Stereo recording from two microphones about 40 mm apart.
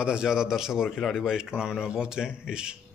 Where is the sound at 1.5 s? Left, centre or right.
Right.